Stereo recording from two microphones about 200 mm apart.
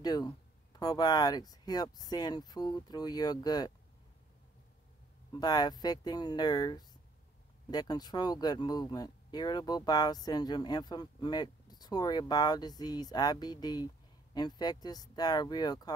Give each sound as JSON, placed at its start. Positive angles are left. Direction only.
{"t": 0.0, "sound": "a sound", "side_deg": 20}
{"t": 0.7, "sound": "speech", "side_deg": 20}
{"t": 5.3, "sound": "speech", "side_deg": 20}